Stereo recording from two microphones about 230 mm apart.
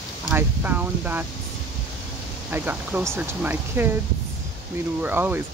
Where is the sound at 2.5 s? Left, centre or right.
Centre.